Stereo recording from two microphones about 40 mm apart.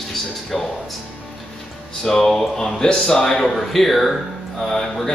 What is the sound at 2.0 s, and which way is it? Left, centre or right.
A man's voice, centre.